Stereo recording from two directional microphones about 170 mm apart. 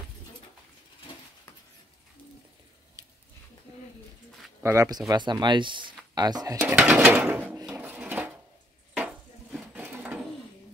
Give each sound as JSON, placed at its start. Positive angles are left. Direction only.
{"t": 4.6, "sound": "speech", "side_deg": -20}
{"t": 6.7, "sound": "a sound", "side_deg": -5}
{"t": 7.7, "sound": "dishes", "side_deg": -10}